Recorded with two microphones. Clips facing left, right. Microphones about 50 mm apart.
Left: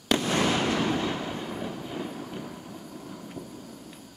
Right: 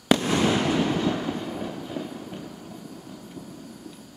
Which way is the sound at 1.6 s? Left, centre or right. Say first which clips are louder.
Right 2 dB; centre.